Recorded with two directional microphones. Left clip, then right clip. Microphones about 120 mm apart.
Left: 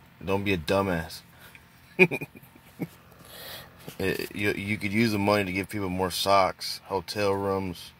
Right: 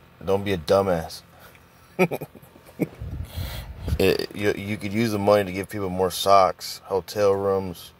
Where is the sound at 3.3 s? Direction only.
30° right (ahead or behind).